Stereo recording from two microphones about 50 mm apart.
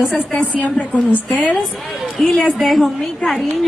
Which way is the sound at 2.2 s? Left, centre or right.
Centre.